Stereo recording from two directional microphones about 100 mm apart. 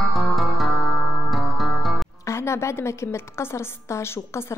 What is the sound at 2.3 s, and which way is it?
A woman's voice, 25° left (ahead or behind).